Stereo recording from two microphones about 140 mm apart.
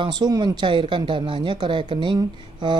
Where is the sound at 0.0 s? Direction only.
30° right (ahead or behind).